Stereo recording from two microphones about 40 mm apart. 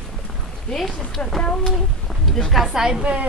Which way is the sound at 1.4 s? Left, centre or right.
Left.